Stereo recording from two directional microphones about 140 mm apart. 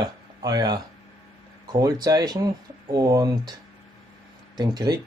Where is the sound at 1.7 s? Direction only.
30° right (ahead or behind).